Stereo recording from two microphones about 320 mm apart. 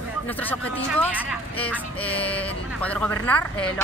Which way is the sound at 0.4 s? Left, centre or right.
Centre.